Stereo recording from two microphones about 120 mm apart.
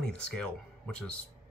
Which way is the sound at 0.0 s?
5° left (ahead or behind).